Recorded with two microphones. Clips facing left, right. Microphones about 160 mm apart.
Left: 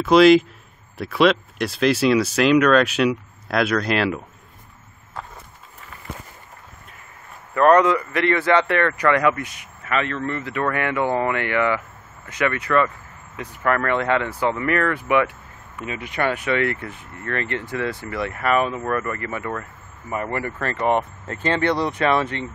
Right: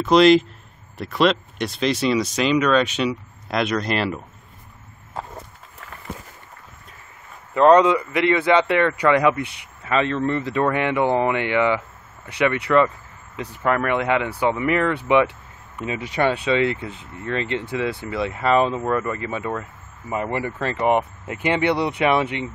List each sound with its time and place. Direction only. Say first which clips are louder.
0.0 s speech: left 1 dB; 5° left (ahead or behind)
7.5 s speech: right 1 dB; 20° right (ahead or behind)